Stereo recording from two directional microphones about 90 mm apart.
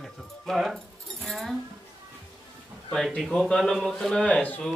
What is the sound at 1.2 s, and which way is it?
Keys jangling, centre (ahead or behind).